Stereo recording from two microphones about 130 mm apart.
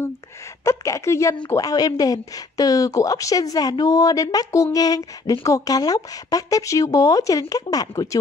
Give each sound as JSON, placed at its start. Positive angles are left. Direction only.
{"t": 0.7, "sound": "speech", "side_deg": 25}